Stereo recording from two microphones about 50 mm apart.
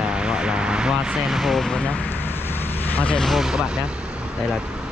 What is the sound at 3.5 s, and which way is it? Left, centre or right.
Speech, centre.